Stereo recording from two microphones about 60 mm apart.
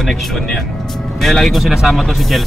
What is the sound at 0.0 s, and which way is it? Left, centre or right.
Speech, centre.